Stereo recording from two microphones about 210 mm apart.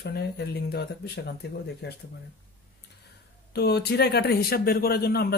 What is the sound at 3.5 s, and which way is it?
Speech, 50° left (ahead or behind).